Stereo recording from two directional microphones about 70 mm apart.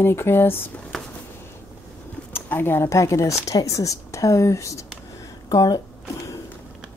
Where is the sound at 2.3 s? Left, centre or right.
Left.